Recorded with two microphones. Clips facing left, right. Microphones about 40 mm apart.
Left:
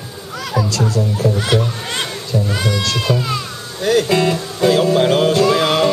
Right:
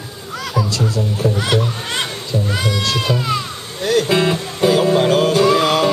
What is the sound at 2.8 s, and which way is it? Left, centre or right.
Speech, right.